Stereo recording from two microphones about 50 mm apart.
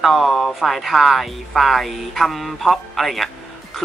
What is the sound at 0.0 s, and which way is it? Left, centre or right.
Speech, centre.